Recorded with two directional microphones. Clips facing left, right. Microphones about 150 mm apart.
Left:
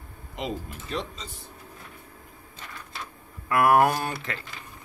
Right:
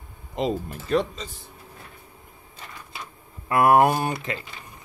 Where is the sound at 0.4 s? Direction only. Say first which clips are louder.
Right 7 dB; 35° right (ahead or behind).